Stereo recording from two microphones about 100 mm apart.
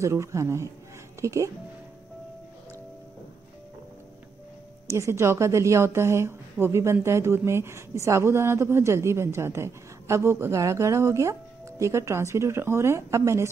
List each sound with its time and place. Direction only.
0.0 s a woman's voice: 30° right (ahead or behind)
4.9 s a woman's voice: 30° right (ahead or behind)